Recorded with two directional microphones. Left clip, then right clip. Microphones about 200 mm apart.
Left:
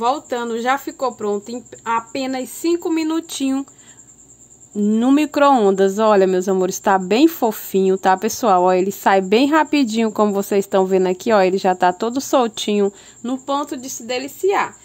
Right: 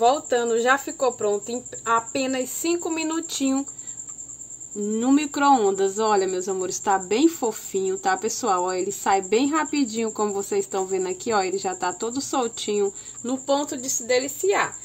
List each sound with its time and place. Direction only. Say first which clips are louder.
0.0 s speech: even; 50° left (ahead or behind)
4.9 s speech: left 6 dB; 45° left (ahead or behind)